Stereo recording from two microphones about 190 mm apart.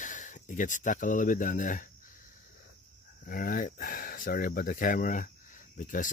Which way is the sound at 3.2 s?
50° left (ahead or behind).